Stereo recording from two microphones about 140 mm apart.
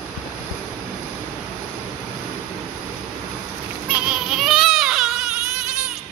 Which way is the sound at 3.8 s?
10° right (ahead or behind).